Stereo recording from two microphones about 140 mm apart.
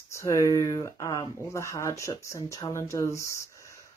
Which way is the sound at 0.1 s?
20° left (ahead or behind).